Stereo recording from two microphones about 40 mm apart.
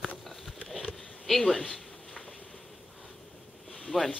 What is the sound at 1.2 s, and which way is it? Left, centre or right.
Speech, centre.